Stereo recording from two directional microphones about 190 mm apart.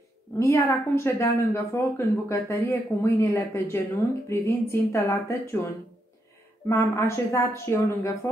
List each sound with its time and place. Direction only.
0.4 s a woman's voice: 15° left (ahead or behind)
6.7 s a woman's voice: 15° left (ahead or behind)